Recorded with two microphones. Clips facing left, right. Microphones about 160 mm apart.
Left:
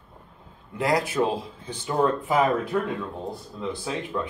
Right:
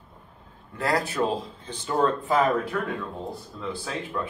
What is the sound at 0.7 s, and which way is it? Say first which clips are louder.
A man's voice: left 2 dB; 15° left (ahead or behind).